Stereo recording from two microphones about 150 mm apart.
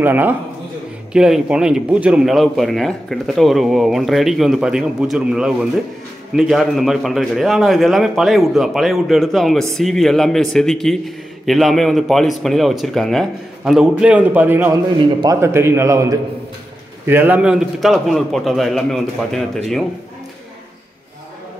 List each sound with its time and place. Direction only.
0.0 s a man's voice: 10° right (ahead or behind)